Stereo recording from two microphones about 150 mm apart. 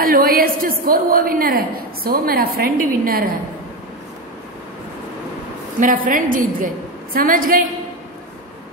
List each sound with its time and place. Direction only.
0.0 s a woman's voice: 75° right (ahead or behind)
5.8 s a woman's voice: 60° right (ahead or behind)